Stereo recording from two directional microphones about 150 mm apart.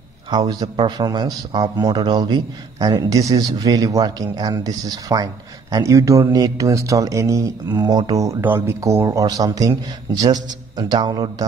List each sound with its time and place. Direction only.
0.3 s speech: 25° right (ahead or behind)